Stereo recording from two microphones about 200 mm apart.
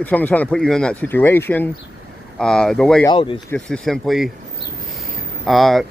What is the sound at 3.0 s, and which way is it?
Speech, 25° left (ahead or behind).